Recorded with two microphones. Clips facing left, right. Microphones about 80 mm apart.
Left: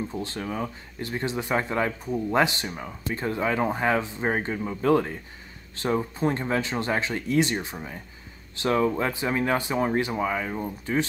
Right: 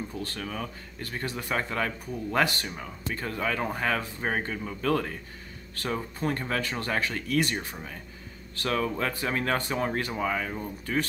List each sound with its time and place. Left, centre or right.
0.1 s speech: left